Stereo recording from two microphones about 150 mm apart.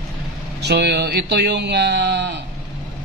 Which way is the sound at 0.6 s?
90° right.